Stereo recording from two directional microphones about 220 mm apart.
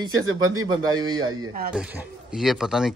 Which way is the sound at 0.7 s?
20° right (ahead or behind).